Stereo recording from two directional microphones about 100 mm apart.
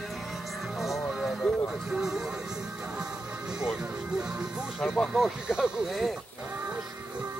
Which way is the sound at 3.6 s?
5° right (ahead or behind).